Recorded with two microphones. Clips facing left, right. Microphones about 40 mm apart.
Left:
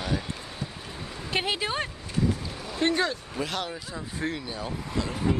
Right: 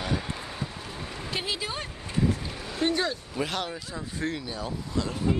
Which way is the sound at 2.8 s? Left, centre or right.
Left.